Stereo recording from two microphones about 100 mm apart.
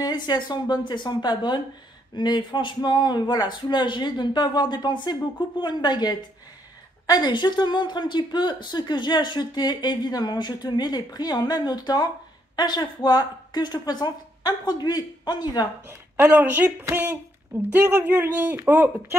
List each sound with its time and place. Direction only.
0.0 s speech: 45° left (ahead or behind)
16.2 s speech: 15° right (ahead or behind)